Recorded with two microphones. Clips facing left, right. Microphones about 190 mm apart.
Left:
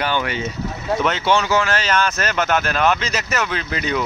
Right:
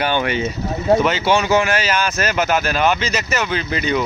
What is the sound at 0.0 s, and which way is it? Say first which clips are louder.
Speech: right 3 dB; 20° right (ahead or behind).